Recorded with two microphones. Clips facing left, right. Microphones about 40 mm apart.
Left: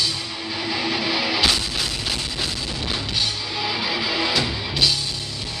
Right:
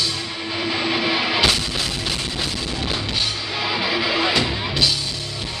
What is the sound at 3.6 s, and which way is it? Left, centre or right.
Music, right.